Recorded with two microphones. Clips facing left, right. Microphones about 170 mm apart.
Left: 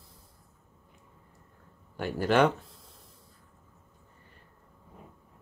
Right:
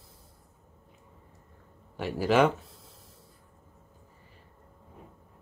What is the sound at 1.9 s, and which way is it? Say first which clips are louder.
Speech: right 1 dB; centre (ahead or behind).